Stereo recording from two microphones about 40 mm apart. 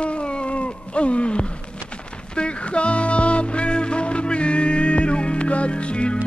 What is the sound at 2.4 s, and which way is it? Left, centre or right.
Music, left.